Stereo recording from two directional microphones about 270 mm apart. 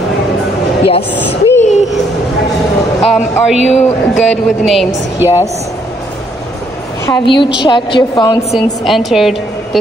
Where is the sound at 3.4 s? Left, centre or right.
Centre.